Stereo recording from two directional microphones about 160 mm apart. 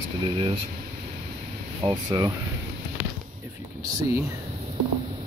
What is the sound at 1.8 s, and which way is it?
Speech, 25° right (ahead or behind).